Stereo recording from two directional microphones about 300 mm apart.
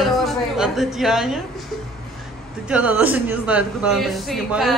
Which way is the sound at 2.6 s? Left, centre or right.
Centre.